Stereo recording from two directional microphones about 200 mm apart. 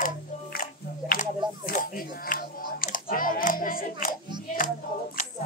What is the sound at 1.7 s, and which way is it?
Music, 45° left (ahead or behind).